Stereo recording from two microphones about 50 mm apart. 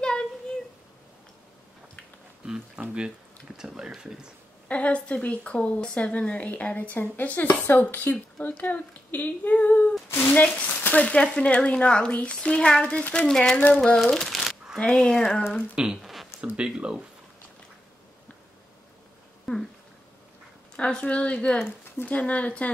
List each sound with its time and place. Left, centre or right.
0.0 s a sound: centre
2.4 s speech: centre
4.6 s a woman's voice: left
10.0 s speech: left
10.3 s a woman's voice: left
11.1 s speech: left
14.3 s shuffling cards: centre
14.8 s speech: centre
15.7 s speech: centre
16.0 s a sound: centre
16.5 s speech: centre
19.5 s speech: centre
20.7 s speech: centre